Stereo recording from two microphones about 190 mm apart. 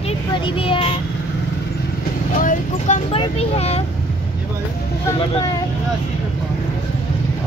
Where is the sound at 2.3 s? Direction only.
45° left (ahead or behind).